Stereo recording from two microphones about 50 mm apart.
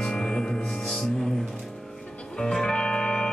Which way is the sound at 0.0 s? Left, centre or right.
Centre.